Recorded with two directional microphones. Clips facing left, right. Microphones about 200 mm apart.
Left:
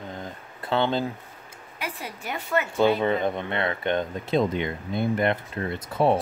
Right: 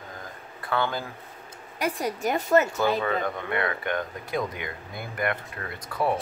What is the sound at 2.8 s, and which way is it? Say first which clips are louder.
Speech: left 4 dB; 25° left (ahead or behind).